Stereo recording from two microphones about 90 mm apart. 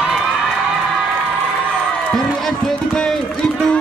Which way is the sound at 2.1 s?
5° left (ahead or behind).